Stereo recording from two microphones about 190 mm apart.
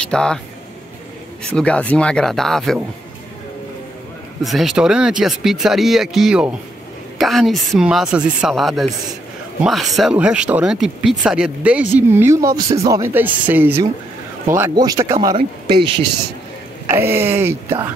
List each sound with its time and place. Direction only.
0.0 s speech: 5° left (ahead or behind)
1.5 s speech: 5° left (ahead or behind)
4.4 s speech: centre (ahead or behind); by 15.1 s 20° right (ahead or behind)
16.8 s speech: 10° right (ahead or behind)